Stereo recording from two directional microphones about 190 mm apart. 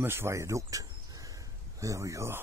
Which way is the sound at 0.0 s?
15° right (ahead or behind).